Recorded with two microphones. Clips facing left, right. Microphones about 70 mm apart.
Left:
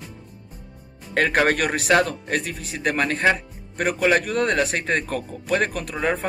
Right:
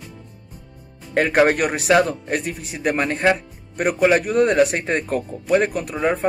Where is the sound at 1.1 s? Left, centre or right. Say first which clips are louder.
Right 3 dB; centre.